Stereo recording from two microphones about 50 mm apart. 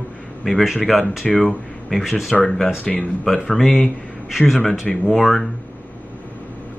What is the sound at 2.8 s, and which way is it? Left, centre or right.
Speech, left.